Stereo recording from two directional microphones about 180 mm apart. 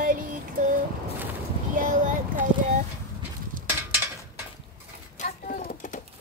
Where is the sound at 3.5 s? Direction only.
50° right (ahead or behind).